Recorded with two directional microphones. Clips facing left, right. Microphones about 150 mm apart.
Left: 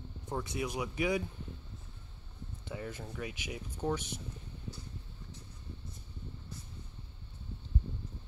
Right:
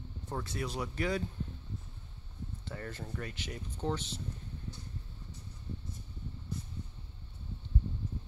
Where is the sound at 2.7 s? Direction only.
10° left (ahead or behind).